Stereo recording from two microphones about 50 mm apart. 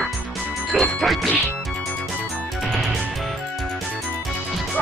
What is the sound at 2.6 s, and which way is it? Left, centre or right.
Music, centre.